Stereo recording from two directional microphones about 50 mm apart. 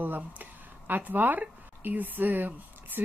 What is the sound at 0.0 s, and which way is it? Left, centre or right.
A woman's voice, right.